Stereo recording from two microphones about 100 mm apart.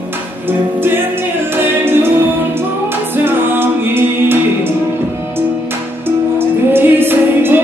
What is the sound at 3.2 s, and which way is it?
Music, 20° right (ahead or behind).